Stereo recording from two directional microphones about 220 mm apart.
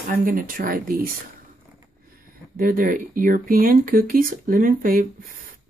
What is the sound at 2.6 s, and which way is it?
Speech, 40° right (ahead or behind).